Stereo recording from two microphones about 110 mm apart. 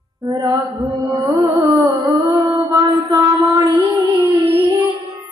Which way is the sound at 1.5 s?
30° right (ahead or behind).